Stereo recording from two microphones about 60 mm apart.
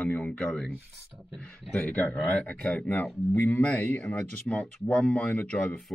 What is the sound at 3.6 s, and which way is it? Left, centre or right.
Speech, centre.